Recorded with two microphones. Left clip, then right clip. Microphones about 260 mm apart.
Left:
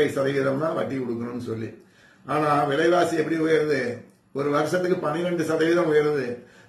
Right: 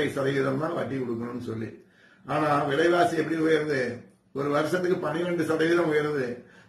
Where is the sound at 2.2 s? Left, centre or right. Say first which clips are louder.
Left 3 dB; centre.